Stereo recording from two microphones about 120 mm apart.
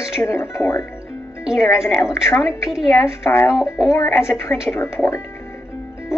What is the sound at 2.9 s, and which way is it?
Speech, 25° left (ahead or behind).